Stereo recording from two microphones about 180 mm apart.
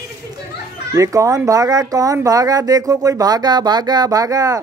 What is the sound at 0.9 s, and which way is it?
Speech, 15° right (ahead or behind).